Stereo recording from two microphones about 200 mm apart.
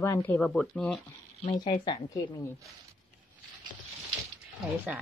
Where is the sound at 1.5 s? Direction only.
25° left (ahead or behind).